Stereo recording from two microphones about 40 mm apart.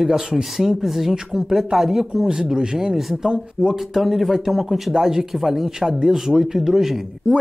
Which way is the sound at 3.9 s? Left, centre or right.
Centre.